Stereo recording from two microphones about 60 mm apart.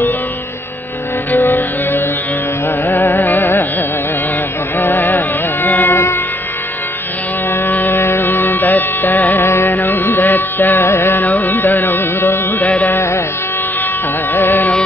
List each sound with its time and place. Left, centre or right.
1.3 s music: left
3.1 s carnatic music: left
4.7 s music: left
7.6 s music: left
9.7 s carnatic music: left
12.8 s music: left
14.3 s carnatic music: left